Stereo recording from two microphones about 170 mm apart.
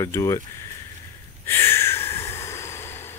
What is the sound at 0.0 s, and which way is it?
Speech, 15° left (ahead or behind).